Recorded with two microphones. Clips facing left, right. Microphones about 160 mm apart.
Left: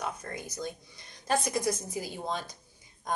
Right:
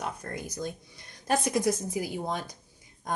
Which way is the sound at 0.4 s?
15° right (ahead or behind).